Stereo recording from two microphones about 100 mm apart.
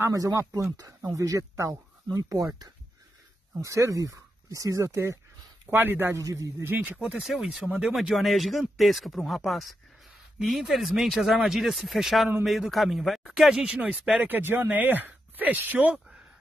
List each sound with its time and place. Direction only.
0.1 s speech: 30° right (ahead or behind)
7.0 s speech: 5° right (ahead or behind)